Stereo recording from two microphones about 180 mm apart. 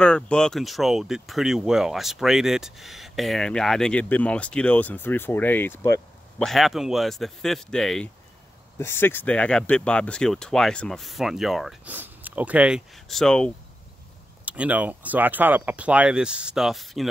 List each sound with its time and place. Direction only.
0.0 s speech: 5° left (ahead or behind)
6.4 s speech: centre (ahead or behind)
14.4 s speech: 5° right (ahead or behind)